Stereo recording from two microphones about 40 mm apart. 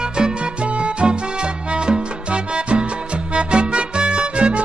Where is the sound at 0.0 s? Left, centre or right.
Right.